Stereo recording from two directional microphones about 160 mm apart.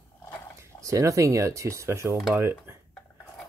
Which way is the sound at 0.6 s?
20° right (ahead or behind).